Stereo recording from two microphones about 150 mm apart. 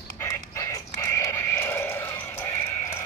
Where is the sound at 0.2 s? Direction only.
20° left (ahead or behind).